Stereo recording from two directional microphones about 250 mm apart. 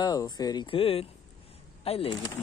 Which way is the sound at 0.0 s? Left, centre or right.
Centre.